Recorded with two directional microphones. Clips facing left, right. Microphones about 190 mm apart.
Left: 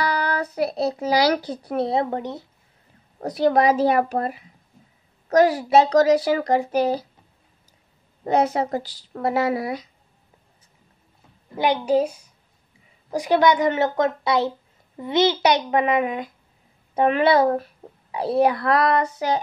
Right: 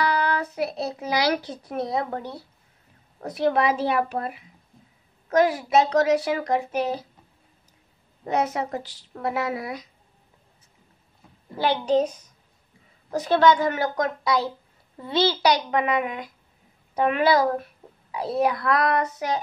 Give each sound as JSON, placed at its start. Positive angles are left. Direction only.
{"t": 0.0, "sound": "a child's voice", "side_deg": 40}
{"t": 3.2, "sound": "a child's voice", "side_deg": 35}
{"t": 8.2, "sound": "a child's voice", "side_deg": 30}
{"t": 11.5, "sound": "a child's voice", "side_deg": 15}